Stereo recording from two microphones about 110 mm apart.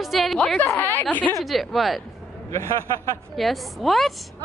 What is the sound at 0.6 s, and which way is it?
Speech, 20° left (ahead or behind).